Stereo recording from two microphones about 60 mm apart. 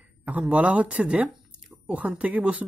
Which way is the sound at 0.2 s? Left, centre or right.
Right.